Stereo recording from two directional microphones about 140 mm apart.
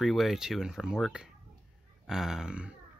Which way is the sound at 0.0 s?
Centre (ahead or behind).